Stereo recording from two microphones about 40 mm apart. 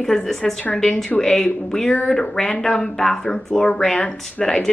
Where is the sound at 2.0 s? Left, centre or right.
Centre.